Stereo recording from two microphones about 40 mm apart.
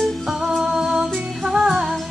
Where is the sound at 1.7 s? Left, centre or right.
Centre.